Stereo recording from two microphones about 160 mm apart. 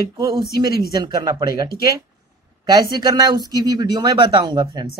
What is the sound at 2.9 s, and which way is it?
A woman's voice, 25° right (ahead or behind).